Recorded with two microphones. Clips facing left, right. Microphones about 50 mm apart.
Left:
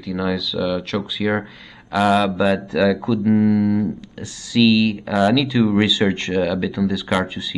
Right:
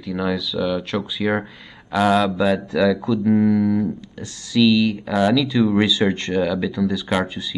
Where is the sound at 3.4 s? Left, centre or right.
Centre.